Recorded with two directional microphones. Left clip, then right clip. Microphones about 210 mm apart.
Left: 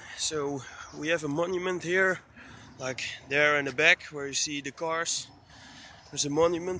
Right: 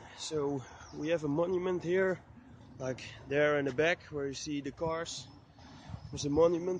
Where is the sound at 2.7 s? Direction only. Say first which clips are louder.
Left 5 dB; 30° right (ahead or behind).